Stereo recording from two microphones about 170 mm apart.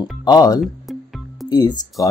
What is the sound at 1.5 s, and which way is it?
Speech, 25° left (ahead or behind).